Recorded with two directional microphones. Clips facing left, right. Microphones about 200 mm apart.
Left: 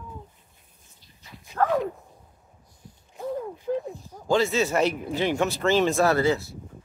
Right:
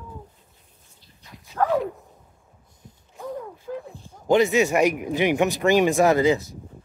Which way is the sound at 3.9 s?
30° right (ahead or behind).